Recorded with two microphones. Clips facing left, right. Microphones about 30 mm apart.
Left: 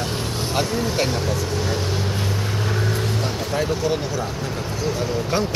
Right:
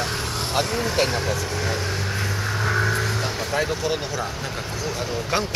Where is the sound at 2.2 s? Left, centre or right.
Centre.